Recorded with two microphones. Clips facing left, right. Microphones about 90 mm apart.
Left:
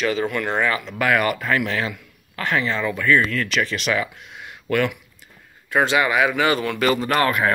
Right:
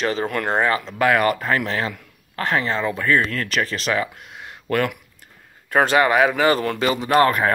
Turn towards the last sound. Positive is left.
turn(degrees=-35)  # may be behind; listen again after turning